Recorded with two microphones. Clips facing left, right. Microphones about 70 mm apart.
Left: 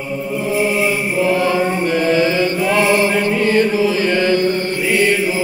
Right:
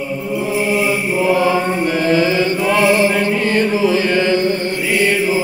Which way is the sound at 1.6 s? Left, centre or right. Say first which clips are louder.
Left 1 dB; centre.